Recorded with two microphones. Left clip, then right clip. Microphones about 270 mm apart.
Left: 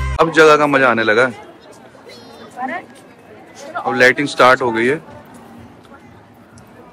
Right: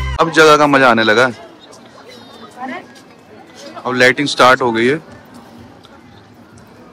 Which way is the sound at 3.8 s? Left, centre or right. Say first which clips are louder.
Right 1 dB; centre.